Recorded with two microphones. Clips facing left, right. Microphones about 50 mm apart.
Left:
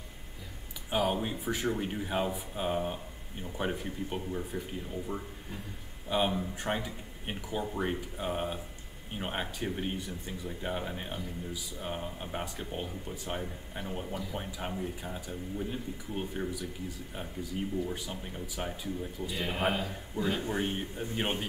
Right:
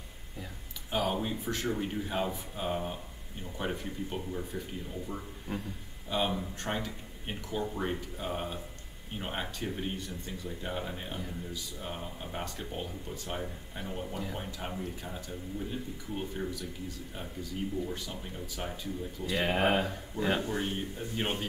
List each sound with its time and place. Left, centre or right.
0.8 s speech: centre
19.4 s speech: right
20.4 s a man's voice: left
21.2 s speech: centre